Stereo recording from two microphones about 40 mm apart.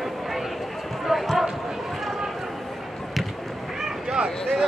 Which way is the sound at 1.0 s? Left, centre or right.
Centre.